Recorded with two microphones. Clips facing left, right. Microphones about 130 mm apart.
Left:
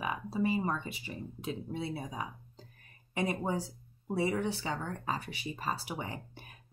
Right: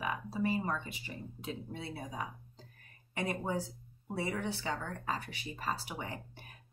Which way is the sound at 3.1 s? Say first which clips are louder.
Left 3 dB; 20° left (ahead or behind).